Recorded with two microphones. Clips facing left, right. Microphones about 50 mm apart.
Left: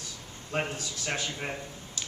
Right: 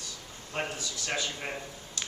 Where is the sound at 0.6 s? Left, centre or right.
Centre.